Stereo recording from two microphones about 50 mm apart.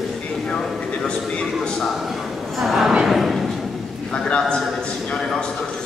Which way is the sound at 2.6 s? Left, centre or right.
Centre.